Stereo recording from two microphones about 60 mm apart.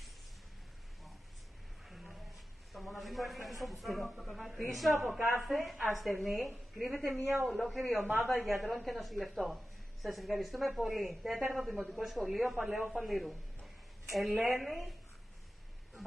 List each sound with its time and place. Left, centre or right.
1.9 s a sound: centre
3.6 s speech: centre
14.3 s a woman's voice: right
14.6 s speech: centre